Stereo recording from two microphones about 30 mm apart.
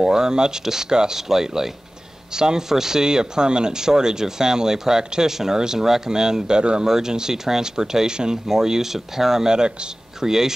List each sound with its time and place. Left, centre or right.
0.0 s speech: right
6.8 s speech: centre